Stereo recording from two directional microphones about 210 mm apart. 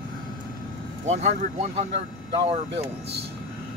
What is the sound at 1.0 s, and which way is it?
Speech, 35° right (ahead or behind).